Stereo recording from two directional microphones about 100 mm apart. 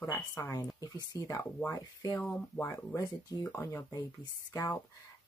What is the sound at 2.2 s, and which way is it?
Speech, 15° left (ahead or behind).